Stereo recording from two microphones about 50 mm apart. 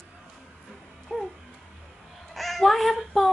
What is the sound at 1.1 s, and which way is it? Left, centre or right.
Dog, centre.